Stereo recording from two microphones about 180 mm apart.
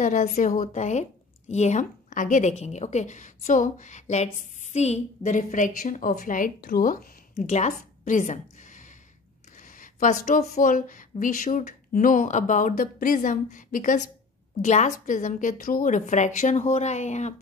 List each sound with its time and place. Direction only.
0.0 s a woman's voice: 45° left (ahead or behind)